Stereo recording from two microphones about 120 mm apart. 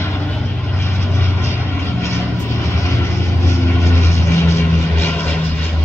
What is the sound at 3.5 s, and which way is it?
Vehicle, 20° left (ahead or behind).